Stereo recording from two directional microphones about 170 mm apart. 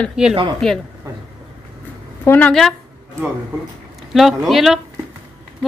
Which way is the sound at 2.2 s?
10° left (ahead or behind).